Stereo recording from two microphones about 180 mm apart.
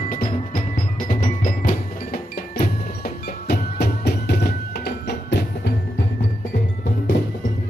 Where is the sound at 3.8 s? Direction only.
60° left (ahead or behind).